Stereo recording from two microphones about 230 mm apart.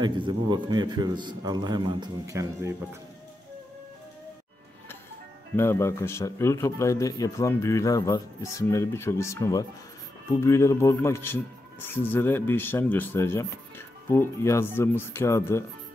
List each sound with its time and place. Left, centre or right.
0.0 s a man's voice: centre
5.6 s speech: centre